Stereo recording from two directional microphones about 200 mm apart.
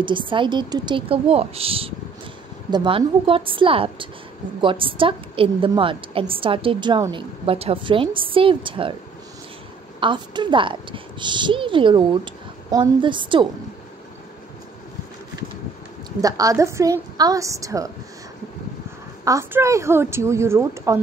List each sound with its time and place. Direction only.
0.0 s a woman's voice: 25° right (ahead or behind)
9.9 s a woman's voice: 25° right (ahead or behind)
16.2 s a woman's voice: 15° right (ahead or behind)
19.2 s a woman's voice: 15° right (ahead or behind)